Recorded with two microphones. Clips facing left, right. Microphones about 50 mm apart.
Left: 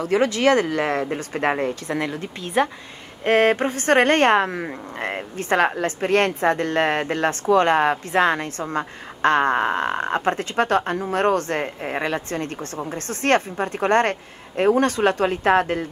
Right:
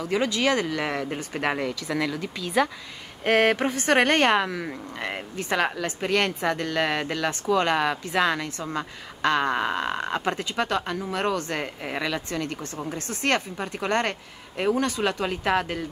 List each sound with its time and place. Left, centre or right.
0.0 s speech: left
4.6 s speech: left
5.3 s speech: left
11.6 s speech: left